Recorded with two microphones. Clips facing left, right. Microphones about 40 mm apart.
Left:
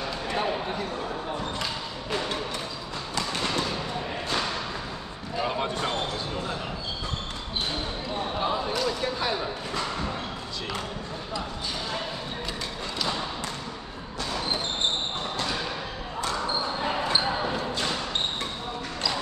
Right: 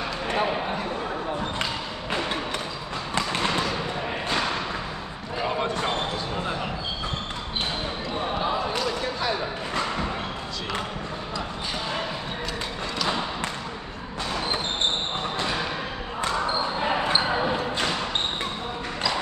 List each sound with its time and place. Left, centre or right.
0.4 s speech: right
2.0 s thump: right
3.2 s fireworks: right
17.1 s basketball bounce: right